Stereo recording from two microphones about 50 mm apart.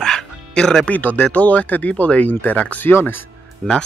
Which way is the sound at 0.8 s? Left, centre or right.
Left.